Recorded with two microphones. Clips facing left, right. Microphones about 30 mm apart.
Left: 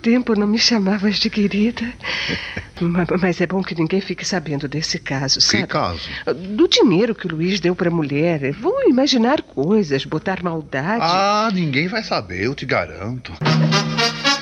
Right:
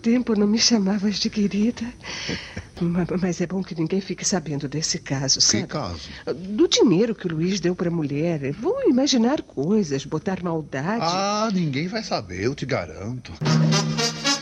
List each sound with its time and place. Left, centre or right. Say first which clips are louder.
0.0 s speech: left 3 dB; left
6.5 s speech: left 3 dB; left
13.4 s music: left 4 dB; left